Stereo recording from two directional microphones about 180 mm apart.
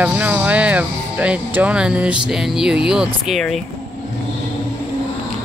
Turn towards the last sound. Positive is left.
turn(degrees=0)  # may be behind; listen again after turning